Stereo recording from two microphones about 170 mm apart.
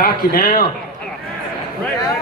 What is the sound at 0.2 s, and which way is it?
Speech, 60° left (ahead or behind).